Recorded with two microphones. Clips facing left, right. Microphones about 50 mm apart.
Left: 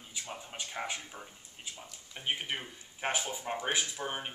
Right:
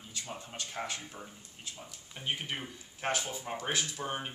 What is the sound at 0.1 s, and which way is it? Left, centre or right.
Speech, centre.